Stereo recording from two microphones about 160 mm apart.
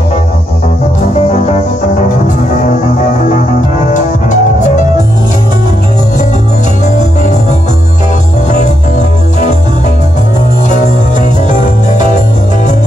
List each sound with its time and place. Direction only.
3.9 s music: 50° left (ahead or behind)
8.5 s music: 50° left (ahead or behind)
10.7 s jingle bell: 50° left (ahead or behind)